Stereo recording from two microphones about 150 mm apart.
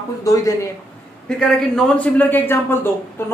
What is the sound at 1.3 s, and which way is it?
A man's voice, 5° left (ahead or behind).